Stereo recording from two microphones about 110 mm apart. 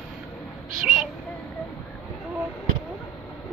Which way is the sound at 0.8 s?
5° right (ahead or behind).